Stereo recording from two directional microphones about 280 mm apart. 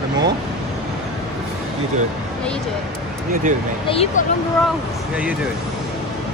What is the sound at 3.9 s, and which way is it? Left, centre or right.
Speech, left.